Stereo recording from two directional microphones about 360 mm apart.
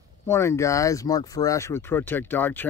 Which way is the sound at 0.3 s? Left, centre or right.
Centre.